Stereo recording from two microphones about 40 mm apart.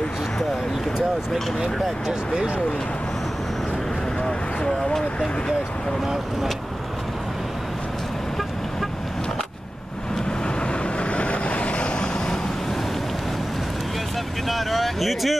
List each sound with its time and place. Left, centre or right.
0.9 s speech: centre
11.1 s vehicle: left
14.5 s a sound: centre